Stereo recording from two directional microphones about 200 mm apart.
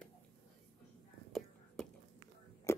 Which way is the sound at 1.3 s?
Centre (ahead or behind).